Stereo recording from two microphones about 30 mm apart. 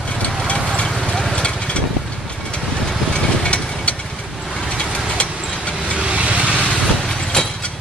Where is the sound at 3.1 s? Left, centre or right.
Left.